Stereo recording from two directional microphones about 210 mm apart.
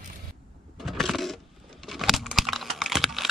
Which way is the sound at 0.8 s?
Centre (ahead or behind).